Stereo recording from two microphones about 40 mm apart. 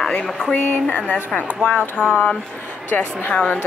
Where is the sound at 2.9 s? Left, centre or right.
Left.